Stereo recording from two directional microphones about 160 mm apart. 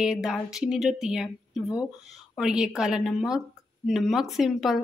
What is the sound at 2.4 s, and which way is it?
Speech, 5° right (ahead or behind).